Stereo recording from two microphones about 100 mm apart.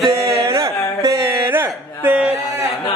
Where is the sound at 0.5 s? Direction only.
35° right (ahead or behind).